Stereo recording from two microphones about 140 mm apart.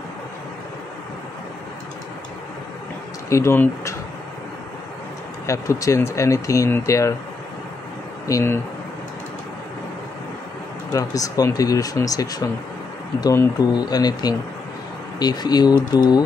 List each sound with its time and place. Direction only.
3.3 s speech: 20° left (ahead or behind)
5.5 s speech: 20° left (ahead or behind)
8.3 s speech: 25° left (ahead or behind)
10.9 s speech: 25° left (ahead or behind)